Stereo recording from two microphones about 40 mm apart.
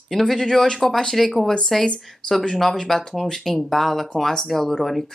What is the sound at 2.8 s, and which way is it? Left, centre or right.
Speech, centre.